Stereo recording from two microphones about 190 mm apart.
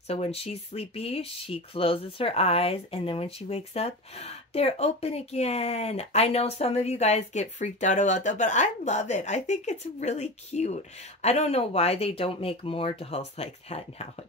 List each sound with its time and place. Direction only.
0.1 s speech: 30° left (ahead or behind)